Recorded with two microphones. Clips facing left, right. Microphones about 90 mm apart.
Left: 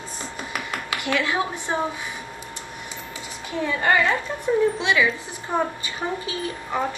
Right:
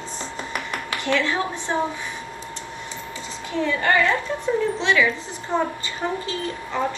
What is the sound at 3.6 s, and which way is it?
A woman's voice, 20° left (ahead or behind).